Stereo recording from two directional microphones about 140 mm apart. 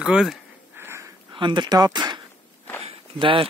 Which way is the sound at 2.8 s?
40° right (ahead or behind).